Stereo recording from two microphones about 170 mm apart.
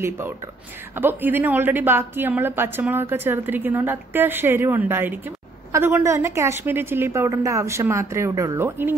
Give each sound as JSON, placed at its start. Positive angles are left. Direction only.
{"t": 0.9, "sound": "a woman's voice", "side_deg": -10}